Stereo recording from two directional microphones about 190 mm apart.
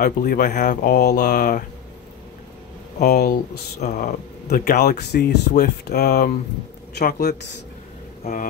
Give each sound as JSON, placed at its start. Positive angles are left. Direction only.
{"t": 0.0, "sound": "speech", "side_deg": 50}
{"t": 3.0, "sound": "speech", "side_deg": 50}